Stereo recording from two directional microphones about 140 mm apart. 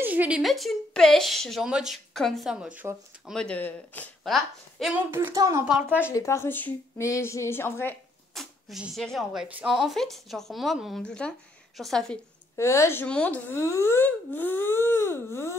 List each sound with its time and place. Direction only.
0.0 s a woman's voice: 10° right (ahead or behind)
3.3 s speech: 10° left (ahead or behind)
4.2 s speech: centre (ahead or behind)
5.1 s a woman's voice: 25° right (ahead or behind)
5.7 s speech: 10° right (ahead or behind)
5.9 s speech: 20° left (ahead or behind)
8.4 s a woman's voice: centre (ahead or behind)
12.5 s speech: 20° left (ahead or behind)